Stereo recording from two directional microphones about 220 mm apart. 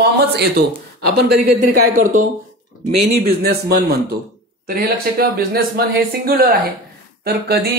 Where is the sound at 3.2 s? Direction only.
45° right (ahead or behind).